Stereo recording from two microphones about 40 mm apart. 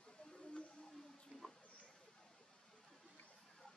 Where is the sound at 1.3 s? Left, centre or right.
Right.